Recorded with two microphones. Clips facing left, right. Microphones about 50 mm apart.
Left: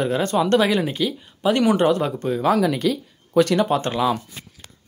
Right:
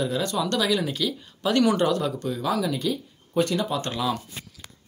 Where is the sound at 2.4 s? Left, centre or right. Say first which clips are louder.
Left 7 dB; left.